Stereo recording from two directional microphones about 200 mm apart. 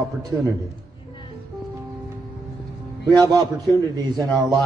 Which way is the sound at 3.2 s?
20° right (ahead or behind).